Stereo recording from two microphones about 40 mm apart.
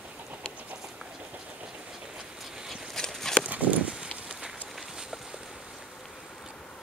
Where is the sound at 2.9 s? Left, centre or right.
Centre.